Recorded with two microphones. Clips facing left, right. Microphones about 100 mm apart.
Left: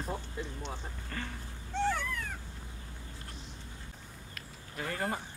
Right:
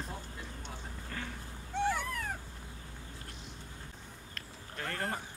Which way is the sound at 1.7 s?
10° right (ahead or behind).